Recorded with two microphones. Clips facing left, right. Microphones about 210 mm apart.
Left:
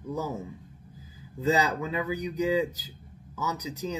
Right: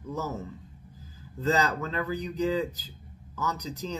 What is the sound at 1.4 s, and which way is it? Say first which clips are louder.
Speech: left 1 dB; 10° left (ahead or behind).